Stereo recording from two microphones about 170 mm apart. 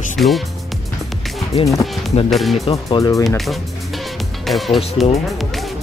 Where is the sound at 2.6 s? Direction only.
25° left (ahead or behind).